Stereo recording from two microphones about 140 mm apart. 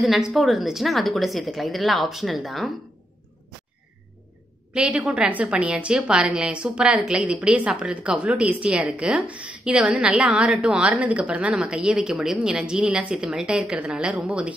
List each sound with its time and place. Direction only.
0.0 s a woman's voice: centre (ahead or behind)
4.7 s a woman's voice: 10° right (ahead or behind)